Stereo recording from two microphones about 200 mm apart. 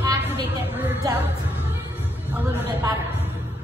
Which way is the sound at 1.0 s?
20° right (ahead or behind).